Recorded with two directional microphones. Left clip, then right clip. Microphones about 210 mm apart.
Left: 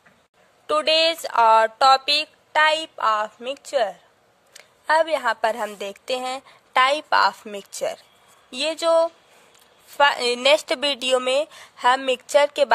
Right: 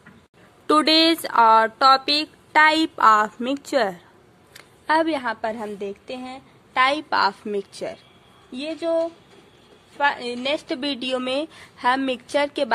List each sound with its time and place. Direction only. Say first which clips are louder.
0.7 s speech: right 2 dB; 20° left (ahead or behind)
4.6 s a woman's voice: left 1 dB; 35° left (ahead or behind)
8.5 s a woman's voice: left 5 dB; 50° left (ahead or behind); by 12.7 s 35° left (ahead or behind)